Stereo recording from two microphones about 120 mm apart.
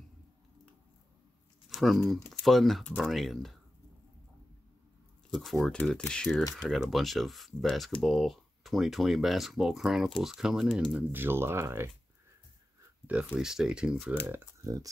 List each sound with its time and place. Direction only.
1.7 s speech: centre (ahead or behind)
5.3 s speech: centre (ahead or behind); by 11.9 s 20° right (ahead or behind)
13.0 s speech: 10° right (ahead or behind)
14.6 s speech: 30° right (ahead or behind)